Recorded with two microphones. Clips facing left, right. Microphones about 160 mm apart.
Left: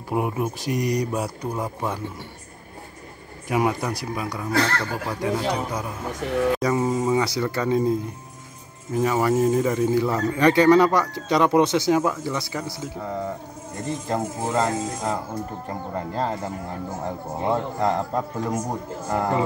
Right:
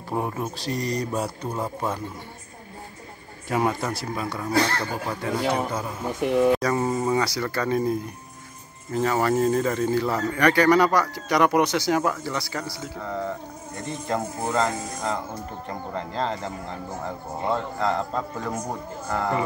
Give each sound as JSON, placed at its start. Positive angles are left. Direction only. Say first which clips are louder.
{"t": 0.1, "sound": "speech", "louder": "left 3 dB", "side_deg": 15}
{"t": 3.4, "sound": "speech", "louder": "left 1 dB", "side_deg": 10}
{"t": 4.5, "sound": "speech", "louder": "even", "side_deg": -15}
{"t": 5.2, "sound": "speech", "louder": "even", "side_deg": 15}
{"t": 7.2, "sound": "a man's voice", "louder": "left 2 dB", "side_deg": 20}
{"t": 14.7, "sound": "speech", "louder": "left 4 dB", "side_deg": 25}
{"t": 15.9, "sound": "speech", "louder": "left 1 dB", "side_deg": 10}